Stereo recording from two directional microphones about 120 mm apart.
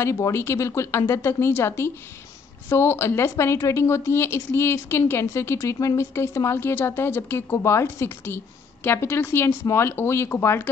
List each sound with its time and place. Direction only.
0.0 s speech: 25° left (ahead or behind)